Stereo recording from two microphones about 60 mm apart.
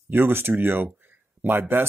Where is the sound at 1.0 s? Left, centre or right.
Right.